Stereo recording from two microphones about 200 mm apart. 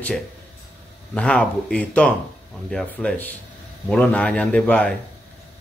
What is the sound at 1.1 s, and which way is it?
A man's voice, 5° left (ahead or behind).